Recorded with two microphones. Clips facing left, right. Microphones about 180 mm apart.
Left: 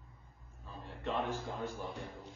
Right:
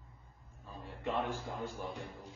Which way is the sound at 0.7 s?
10° right (ahead or behind).